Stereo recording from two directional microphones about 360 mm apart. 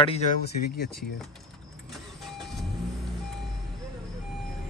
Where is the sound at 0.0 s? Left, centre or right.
Centre.